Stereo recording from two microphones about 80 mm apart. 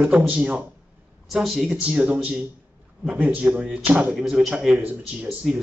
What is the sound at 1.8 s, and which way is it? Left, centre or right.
Speech, centre.